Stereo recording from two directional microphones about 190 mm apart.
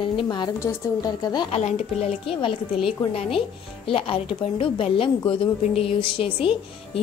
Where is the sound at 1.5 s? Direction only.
35° left (ahead or behind).